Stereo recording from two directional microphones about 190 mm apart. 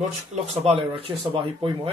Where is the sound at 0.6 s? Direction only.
30° right (ahead or behind).